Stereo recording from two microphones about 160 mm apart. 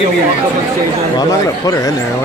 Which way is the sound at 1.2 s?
20° left (ahead or behind).